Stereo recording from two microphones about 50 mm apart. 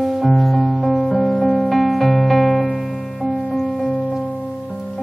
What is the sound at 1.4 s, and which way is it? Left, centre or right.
Music, centre.